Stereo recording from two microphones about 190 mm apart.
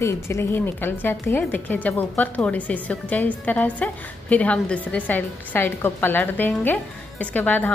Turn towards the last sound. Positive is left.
turn(degrees=10)  # may be behind; listen again after turning